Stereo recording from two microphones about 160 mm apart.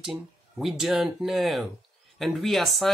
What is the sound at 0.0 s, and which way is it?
Speech, centre (ahead or behind).